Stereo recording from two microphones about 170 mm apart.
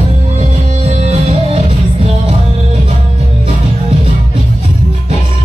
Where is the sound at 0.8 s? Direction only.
40° right (ahead or behind).